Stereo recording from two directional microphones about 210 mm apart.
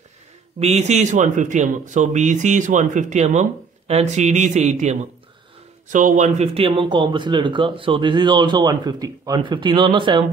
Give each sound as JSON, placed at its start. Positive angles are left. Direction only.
{"t": 0.6, "sound": "speech", "side_deg": -30}